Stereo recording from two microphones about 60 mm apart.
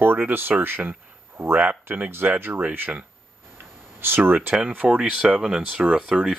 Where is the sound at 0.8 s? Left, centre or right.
Right.